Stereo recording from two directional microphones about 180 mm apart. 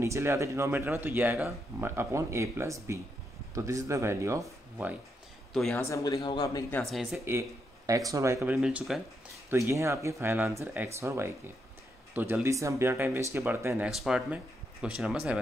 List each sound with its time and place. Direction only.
0.0 s speech: 15° right (ahead or behind)
5.5 s speech: centre (ahead or behind)
5.9 s a man's voice: 15° left (ahead or behind)
6.7 s speech: centre (ahead or behind)
7.2 s speech: 15° right (ahead or behind)
8.5 s speech: 5° right (ahead or behind)
9.5 s speech: 15° right (ahead or behind)